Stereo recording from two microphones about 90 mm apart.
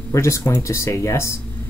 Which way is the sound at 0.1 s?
35° left (ahead or behind).